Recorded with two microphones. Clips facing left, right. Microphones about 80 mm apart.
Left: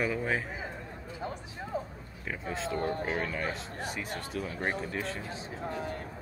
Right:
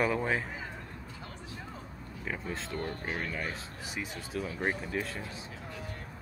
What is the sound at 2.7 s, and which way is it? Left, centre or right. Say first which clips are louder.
Speech: left 6 dB; left.